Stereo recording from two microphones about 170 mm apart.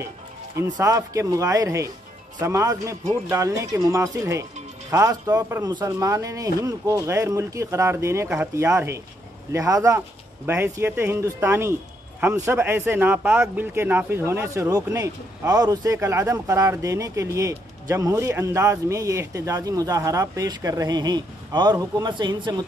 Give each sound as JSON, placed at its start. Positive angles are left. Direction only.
{"t": 0.6, "sound": "speech", "side_deg": -20}